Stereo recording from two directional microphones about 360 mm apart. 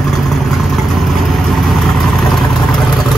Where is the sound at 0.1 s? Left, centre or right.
Centre.